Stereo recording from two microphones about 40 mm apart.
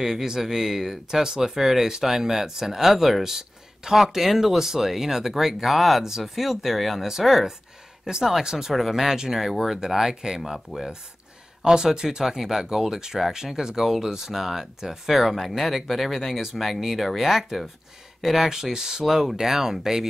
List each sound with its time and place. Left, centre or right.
0.0 s speech: centre